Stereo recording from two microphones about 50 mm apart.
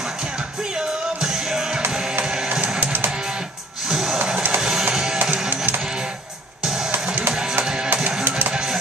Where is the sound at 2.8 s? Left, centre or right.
Right.